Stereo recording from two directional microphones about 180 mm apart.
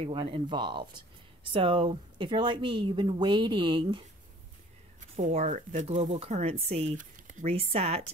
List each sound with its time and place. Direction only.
0.0 s a woman's voice: 30° right (ahead or behind)
5.1 s speech: 40° right (ahead or behind)
7.5 s speech: 35° right (ahead or behind)